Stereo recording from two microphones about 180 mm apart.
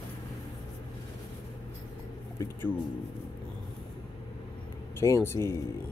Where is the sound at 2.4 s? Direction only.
10° left (ahead or behind).